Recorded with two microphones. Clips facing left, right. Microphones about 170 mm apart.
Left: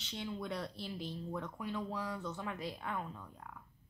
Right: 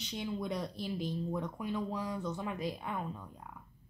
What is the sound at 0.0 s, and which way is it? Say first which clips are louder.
A woman's voice: right 4 dB; 15° right (ahead or behind).